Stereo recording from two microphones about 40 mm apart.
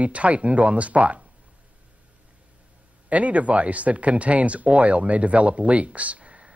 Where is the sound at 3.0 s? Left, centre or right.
Right.